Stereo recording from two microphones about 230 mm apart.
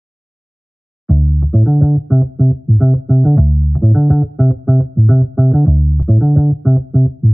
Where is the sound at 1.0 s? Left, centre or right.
Centre.